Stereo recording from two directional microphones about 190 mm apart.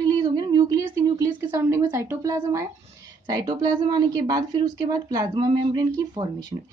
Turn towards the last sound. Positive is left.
turn(degrees=-25)  # may be behind; listen again after turning